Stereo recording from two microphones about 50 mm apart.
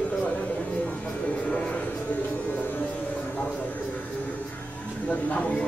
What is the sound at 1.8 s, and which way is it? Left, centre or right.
Music, left.